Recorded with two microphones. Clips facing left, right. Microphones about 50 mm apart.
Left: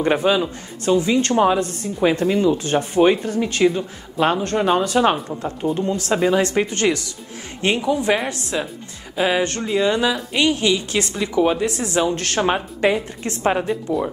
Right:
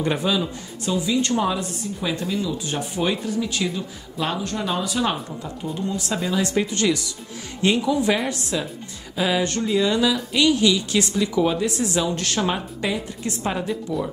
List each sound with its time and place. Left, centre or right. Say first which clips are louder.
0.0 s speech: left 5 dB; left